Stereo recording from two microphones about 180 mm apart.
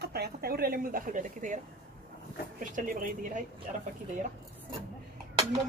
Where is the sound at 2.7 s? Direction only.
50° right (ahead or behind).